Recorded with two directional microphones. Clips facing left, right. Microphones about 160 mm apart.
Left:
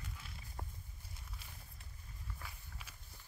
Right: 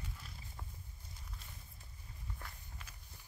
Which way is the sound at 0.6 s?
40° left (ahead or behind).